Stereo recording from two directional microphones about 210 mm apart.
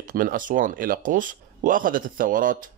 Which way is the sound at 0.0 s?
40° right (ahead or behind).